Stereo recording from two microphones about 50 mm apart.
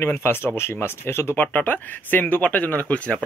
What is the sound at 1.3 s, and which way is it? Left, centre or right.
Speech, left.